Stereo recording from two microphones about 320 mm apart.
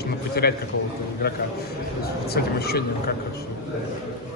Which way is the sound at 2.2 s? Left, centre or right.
Left.